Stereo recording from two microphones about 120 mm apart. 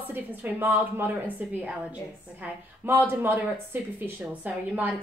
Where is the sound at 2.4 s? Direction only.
15° right (ahead or behind).